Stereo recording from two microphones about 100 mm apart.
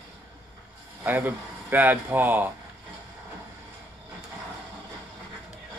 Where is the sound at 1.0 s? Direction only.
20° right (ahead or behind).